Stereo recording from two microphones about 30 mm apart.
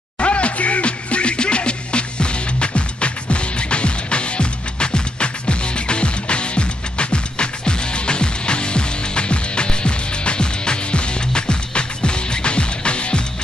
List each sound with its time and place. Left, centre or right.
0.2 s music: left